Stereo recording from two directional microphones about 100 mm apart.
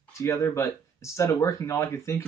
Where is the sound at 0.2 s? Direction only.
30° left (ahead or behind).